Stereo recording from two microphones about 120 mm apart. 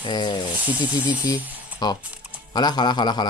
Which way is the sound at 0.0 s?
35° left (ahead or behind).